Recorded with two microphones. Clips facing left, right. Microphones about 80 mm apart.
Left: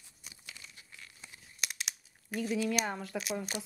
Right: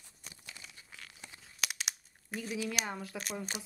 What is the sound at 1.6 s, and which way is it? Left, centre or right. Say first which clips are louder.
Crumpling: right 2 dB; right.